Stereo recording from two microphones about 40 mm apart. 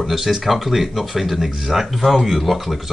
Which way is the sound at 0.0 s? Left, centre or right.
Centre.